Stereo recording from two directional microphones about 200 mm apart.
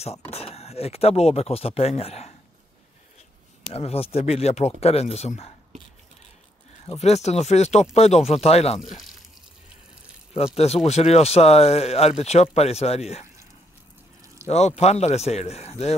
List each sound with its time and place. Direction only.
0.3 s speech: 30° left (ahead or behind)
3.7 s speech: 30° left (ahead or behind)
6.9 s speech: 35° left (ahead or behind)
10.3 s speech: 30° left (ahead or behind)
14.4 s a sound: 15° right (ahead or behind)
14.8 s speech: 30° left (ahead or behind)